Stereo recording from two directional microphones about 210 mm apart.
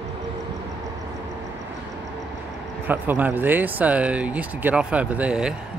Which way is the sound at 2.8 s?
10° right (ahead or behind).